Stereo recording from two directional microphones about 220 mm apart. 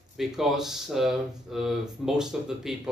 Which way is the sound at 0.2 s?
Centre (ahead or behind).